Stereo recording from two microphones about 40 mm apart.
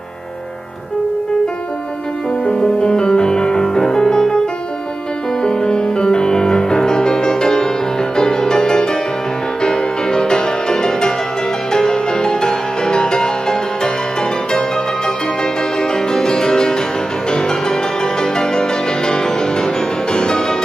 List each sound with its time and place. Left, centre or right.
2.4 s music: centre
5.4 s music: centre
15.8 s music: centre